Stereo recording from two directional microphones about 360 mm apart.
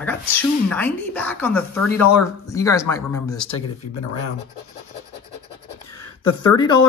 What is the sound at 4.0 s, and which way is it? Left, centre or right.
Speech, left.